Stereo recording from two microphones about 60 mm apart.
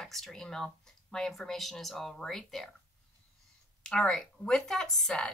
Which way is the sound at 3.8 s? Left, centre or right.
Centre.